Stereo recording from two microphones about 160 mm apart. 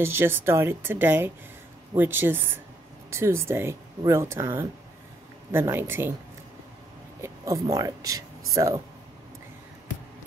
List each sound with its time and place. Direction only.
0.0 s speech: 15° right (ahead or behind)
7.2 s speech: 20° right (ahead or behind)